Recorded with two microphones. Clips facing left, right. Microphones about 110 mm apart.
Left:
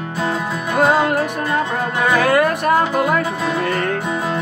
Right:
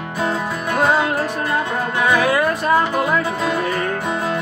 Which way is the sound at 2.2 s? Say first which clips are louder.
Left 2 dB; 55° left (ahead or behind).